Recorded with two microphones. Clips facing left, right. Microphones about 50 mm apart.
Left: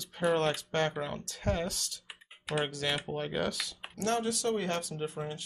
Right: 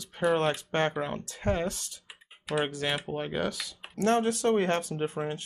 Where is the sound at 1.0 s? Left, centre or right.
Right; by 3.7 s centre.